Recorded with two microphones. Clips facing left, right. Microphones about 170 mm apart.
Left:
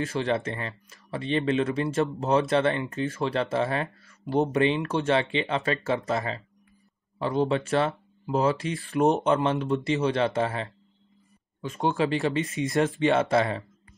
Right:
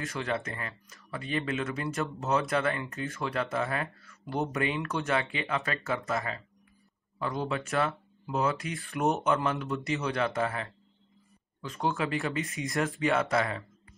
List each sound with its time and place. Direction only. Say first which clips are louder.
0.0 s speech: left 6 dB; 25° left (ahead or behind)